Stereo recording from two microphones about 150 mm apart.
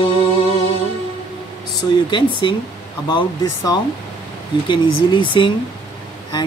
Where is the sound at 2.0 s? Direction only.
30° left (ahead or behind).